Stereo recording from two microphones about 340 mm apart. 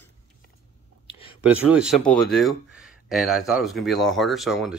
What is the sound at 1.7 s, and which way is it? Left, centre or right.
Speech, centre.